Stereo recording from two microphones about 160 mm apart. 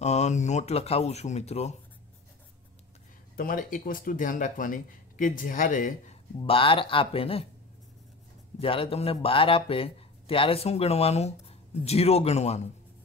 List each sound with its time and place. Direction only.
0.0 s speech: 45° left (ahead or behind)
3.3 s speech: 60° left (ahead or behind)
6.4 s speech: 35° left (ahead or behind)
8.5 s speech: 35° left (ahead or behind)